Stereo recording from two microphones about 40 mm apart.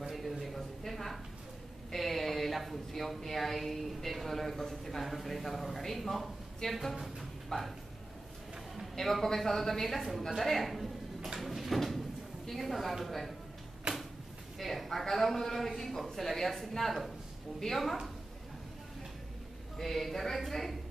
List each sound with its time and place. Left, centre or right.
0.1 s a sound: centre
1.9 s speech: centre
7.4 s a sound: centre
8.9 s speech: centre
11.3 s sliding door: centre
12.4 s a woman's voice: centre
14.6 s a man's voice: centre
19.8 s speech: centre